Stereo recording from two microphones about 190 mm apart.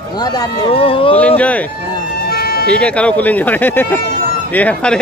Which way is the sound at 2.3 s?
55° left (ahead or behind).